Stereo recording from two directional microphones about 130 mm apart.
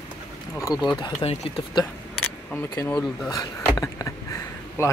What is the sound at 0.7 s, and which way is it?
Speech, 35° left (ahead or behind).